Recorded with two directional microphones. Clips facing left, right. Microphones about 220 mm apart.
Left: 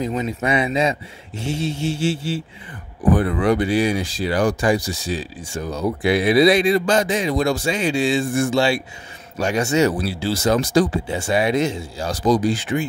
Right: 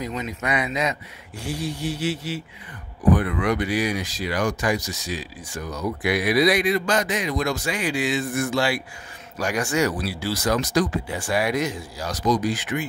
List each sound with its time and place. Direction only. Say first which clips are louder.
0.0 s speech: left 6 dB; 30° left (ahead or behind)